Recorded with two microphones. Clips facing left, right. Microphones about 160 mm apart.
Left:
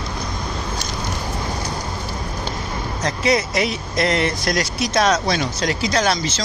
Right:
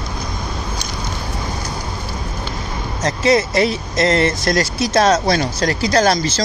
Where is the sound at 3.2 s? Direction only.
30° right (ahead or behind).